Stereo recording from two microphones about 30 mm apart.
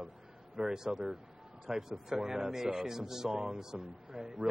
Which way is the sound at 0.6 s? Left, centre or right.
Centre.